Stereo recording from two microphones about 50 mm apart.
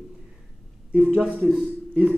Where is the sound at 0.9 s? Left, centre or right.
Right.